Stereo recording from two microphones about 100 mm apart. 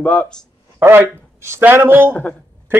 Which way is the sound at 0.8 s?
25° right (ahead or behind).